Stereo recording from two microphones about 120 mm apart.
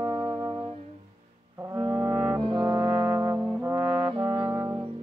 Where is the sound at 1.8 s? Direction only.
30° right (ahead or behind).